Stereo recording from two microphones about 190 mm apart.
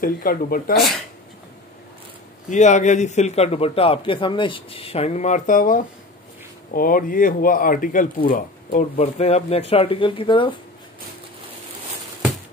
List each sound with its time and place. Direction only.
0.0 s speech: 50° left (ahead or behind)
0.7 s speech: centre (ahead or behind)
2.5 s a man's voice: 40° left (ahead or behind)